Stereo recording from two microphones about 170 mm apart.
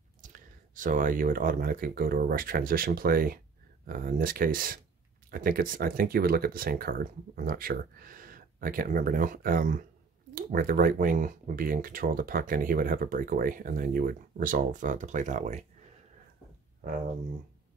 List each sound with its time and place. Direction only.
0.2 s speech: 50° right (ahead or behind)